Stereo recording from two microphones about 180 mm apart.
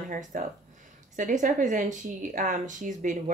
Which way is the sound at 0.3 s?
50° right (ahead or behind).